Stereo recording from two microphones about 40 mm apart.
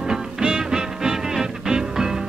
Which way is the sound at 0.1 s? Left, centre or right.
Centre.